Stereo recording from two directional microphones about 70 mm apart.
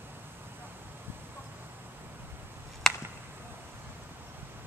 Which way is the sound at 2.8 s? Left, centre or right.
Centre.